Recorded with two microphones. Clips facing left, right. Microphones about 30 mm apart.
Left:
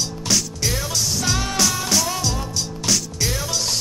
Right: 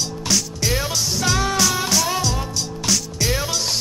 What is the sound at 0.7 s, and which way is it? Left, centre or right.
Music, centre.